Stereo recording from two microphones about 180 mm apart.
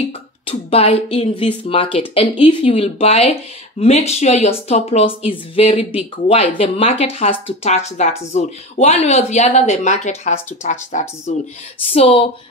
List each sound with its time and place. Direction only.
0.5 s speech: 30° left (ahead or behind)